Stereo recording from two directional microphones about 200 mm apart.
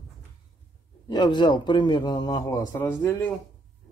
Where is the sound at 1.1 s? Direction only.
20° left (ahead or behind).